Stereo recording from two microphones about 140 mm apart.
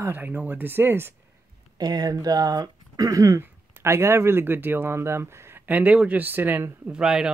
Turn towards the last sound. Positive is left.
turn(degrees=-5)  # may be behind; listen again after turning